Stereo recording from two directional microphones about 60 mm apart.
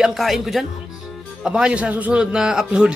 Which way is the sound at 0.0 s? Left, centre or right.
Centre.